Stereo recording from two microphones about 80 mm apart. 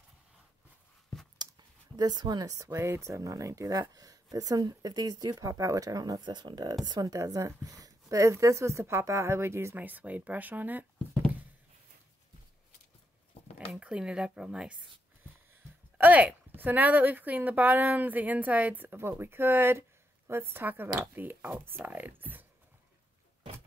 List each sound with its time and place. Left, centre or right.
2.0 s speech: right
6.2 s a woman's voice: right
9.8 s a woman's voice: right
13.7 s speech: centre
16.0 s a woman's voice: centre